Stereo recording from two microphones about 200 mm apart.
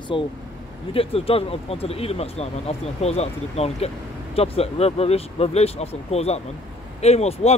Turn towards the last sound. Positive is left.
turn(degrees=30)  # may be behind; listen again after turning